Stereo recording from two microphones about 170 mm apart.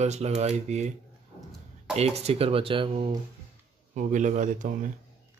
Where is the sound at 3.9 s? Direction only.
45° right (ahead or behind).